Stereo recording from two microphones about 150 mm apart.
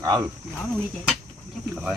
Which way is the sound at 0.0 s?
25° right (ahead or behind).